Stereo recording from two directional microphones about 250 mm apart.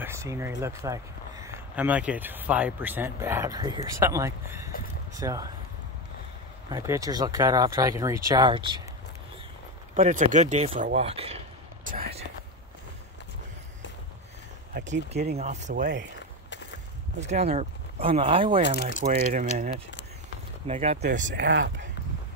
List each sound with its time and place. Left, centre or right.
0.0 s speech: centre
6.7 s speech: centre
9.9 s speech: right
14.7 s speech: right
17.3 s speech: right
19.0 s speech: right
20.6 s speech: right
21.4 s speech: right